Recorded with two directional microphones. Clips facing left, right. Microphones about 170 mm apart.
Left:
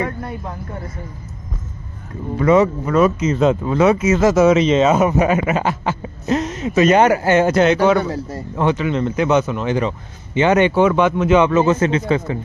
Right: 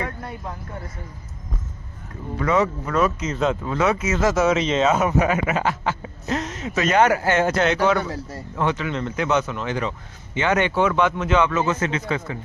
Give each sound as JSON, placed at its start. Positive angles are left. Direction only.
{"t": 2.3, "sound": "speech", "side_deg": 15}
{"t": 11.4, "sound": "a man's voice", "side_deg": 25}